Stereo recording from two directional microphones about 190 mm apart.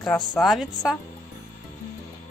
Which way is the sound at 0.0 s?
5° left (ahead or behind).